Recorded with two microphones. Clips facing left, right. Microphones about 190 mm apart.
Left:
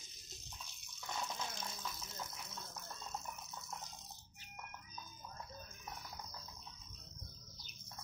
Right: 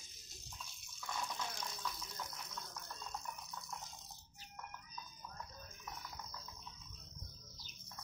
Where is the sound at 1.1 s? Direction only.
25° left (ahead or behind).